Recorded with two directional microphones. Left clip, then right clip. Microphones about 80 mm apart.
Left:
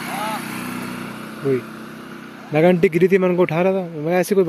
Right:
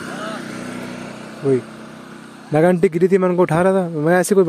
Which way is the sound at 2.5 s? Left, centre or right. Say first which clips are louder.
Even; right.